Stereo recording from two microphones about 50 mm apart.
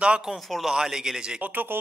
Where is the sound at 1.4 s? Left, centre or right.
Right.